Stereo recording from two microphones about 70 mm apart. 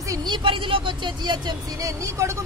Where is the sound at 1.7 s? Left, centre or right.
Right.